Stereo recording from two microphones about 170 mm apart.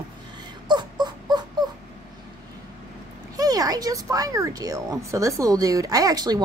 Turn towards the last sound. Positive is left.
turn(degrees=-20)  # may be behind; listen again after turning